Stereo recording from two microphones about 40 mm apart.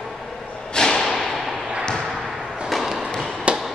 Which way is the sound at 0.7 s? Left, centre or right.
Centre.